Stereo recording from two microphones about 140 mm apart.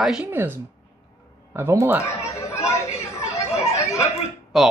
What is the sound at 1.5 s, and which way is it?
Speech, 15° right (ahead or behind).